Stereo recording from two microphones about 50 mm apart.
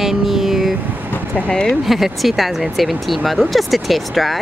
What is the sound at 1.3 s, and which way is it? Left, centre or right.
Speech, centre.